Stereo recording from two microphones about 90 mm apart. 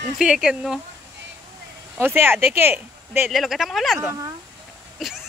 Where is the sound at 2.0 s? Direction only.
25° right (ahead or behind).